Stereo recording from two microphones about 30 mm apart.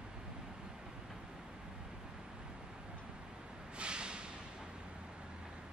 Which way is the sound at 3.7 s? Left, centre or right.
Right.